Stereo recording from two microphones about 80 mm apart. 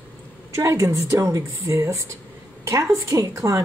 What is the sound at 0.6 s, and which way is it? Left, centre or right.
Speech, right.